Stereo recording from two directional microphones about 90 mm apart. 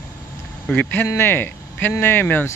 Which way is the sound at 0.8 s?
20° left (ahead or behind).